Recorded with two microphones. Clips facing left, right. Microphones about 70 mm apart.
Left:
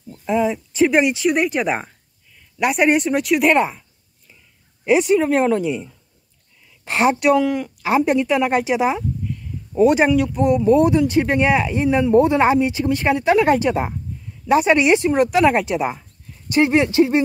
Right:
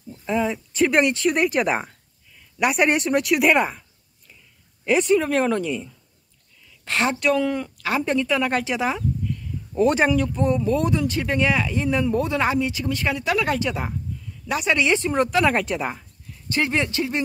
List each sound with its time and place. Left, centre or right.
0.2 s speech: centre
4.8 s speech: centre
7.4 s speech: centre
7.7 s speech: centre
16.4 s speech: left